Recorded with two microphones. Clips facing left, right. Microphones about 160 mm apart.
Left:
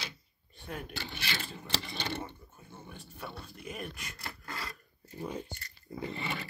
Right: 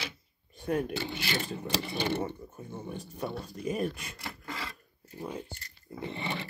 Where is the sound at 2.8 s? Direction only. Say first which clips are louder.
Right 8 dB; 40° right (ahead or behind).